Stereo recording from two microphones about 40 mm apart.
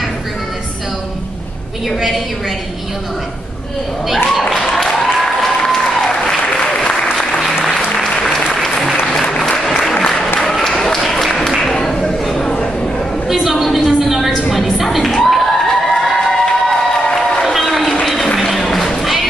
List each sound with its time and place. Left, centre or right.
2.0 s a woman's voice: centre
4.3 s applause: centre
11.6 s a sound: centre
13.3 s a sound: centre
15.2 s crowd: centre
17.0 s crowd: left
17.4 s crowd: centre
18.0 s a sound: centre
18.3 s music: centre